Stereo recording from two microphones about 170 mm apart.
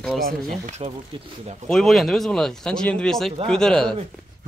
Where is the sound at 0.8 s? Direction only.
35° right (ahead or behind).